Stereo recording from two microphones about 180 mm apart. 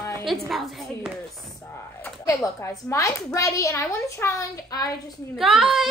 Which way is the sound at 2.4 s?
15° left (ahead or behind).